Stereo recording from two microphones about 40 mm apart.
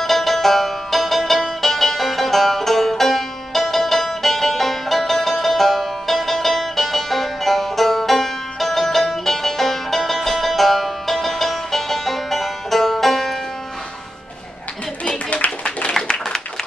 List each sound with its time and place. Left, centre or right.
0.0 s music: centre
15.2 s clapping: left
15.9 s a sound: centre